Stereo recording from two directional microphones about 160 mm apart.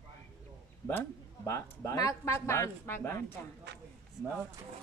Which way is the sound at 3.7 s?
90° right.